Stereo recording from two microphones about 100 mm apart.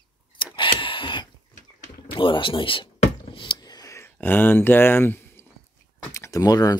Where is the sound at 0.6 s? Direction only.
55° left (ahead or behind).